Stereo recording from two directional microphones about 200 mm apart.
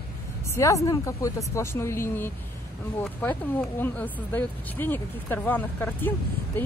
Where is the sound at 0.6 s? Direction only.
15° left (ahead or behind).